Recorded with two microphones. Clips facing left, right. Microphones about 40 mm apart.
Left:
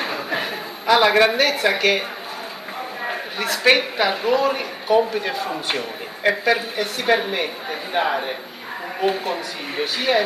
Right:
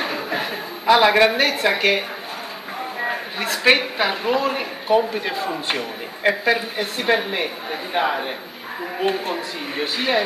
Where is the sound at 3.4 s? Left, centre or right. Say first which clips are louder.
Even; centre.